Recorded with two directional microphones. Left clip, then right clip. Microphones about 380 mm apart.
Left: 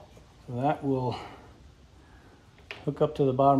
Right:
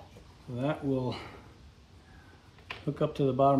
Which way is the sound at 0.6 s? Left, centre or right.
Centre.